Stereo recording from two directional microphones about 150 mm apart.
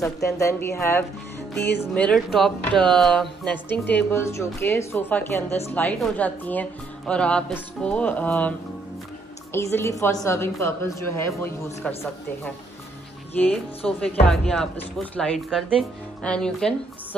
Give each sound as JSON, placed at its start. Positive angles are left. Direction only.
{"t": 0.0, "sound": "speech", "side_deg": 20}
{"t": 11.8, "sound": "speech", "side_deg": 10}
{"t": 13.4, "sound": "speech", "side_deg": 10}